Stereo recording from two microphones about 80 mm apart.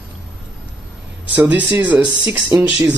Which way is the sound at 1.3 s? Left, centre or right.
Centre.